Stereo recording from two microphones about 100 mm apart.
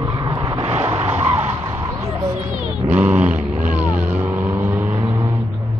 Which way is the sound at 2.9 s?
20° right (ahead or behind).